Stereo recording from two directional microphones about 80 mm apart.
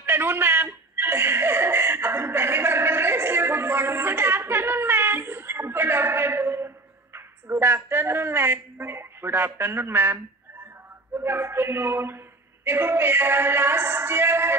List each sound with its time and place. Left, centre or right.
0.0 s chuckle: right
7.2 s a woman's voice: right
11.1 s music: right